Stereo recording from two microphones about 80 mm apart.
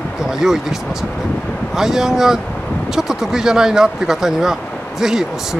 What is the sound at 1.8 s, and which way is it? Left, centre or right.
Speech, centre.